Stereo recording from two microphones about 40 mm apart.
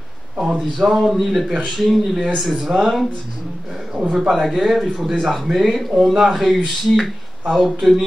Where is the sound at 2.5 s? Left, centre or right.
Centre.